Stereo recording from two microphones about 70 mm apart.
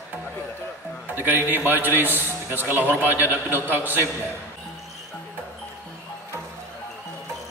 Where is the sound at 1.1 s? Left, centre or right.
Right.